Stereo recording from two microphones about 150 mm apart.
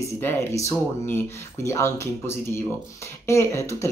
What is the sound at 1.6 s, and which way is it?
Speech, 20° left (ahead or behind).